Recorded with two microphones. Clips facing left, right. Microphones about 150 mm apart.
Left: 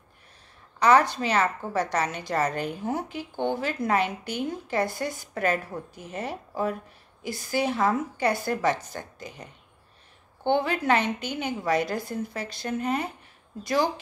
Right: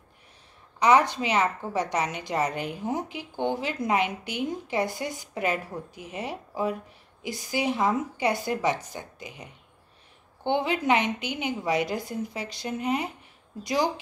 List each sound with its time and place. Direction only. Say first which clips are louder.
0.7 s a woman's voice: left 1 dB; 15° right (ahead or behind)